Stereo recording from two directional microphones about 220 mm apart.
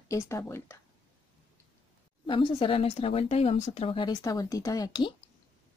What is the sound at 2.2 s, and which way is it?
A woman's voice, 20° left (ahead or behind).